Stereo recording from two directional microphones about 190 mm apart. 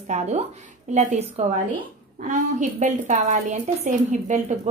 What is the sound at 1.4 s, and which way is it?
A woman's voice, 35° right (ahead or behind).